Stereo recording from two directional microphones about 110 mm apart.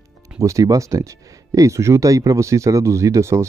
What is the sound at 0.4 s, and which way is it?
Speech, 30° right (ahead or behind).